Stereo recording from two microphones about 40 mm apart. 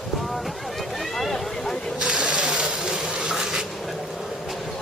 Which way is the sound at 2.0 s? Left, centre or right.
Right.